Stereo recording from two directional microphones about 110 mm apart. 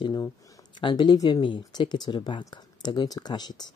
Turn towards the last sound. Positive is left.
turn(degrees=40)  # may be behind; listen again after turning